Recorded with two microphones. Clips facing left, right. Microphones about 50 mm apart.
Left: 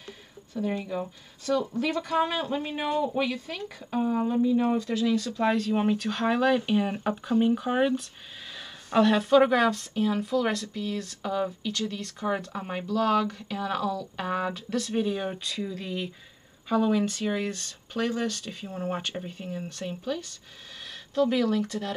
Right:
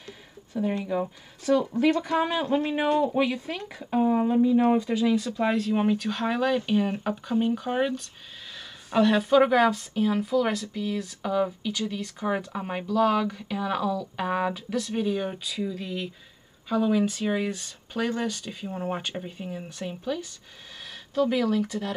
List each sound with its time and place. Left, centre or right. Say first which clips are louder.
0.5 s speech: right 3 dB; centre